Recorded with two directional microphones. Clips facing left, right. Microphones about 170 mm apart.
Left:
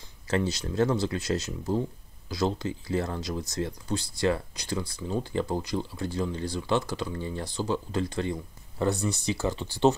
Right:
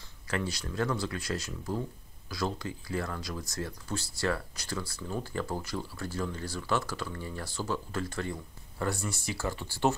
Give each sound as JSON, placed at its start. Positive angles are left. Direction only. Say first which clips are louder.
{"t": 0.3, "sound": "speech", "louder": "left 6 dB", "side_deg": 25}